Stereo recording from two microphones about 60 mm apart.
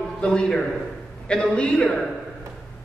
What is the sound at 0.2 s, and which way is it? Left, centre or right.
A man's voice, centre.